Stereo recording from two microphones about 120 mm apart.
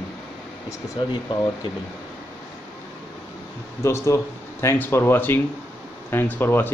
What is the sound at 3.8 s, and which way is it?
Speech, 25° left (ahead or behind).